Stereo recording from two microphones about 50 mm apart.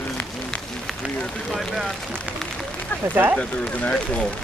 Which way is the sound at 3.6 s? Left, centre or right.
Left.